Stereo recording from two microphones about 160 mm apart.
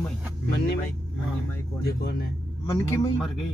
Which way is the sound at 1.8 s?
90° left.